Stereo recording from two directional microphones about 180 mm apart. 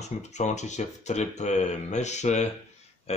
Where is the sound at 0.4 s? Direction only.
40° left (ahead or behind).